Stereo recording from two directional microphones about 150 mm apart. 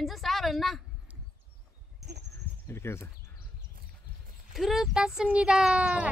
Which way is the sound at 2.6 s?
15° left (ahead or behind).